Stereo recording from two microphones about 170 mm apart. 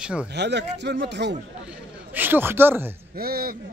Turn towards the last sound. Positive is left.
turn(degrees=-60)  # may be behind; listen again after turning